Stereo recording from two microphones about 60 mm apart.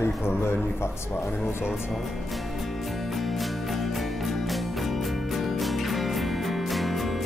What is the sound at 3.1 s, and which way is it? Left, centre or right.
Music, centre.